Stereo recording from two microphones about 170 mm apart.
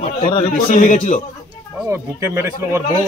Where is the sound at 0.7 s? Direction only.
45° left (ahead or behind).